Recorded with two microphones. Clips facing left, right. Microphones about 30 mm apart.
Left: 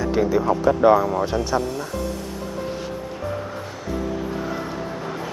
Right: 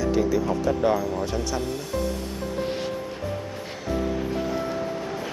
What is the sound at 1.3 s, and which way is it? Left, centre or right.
Speech, left.